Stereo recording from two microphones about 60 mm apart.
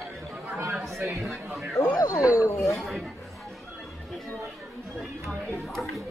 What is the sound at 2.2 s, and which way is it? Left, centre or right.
Speech, right.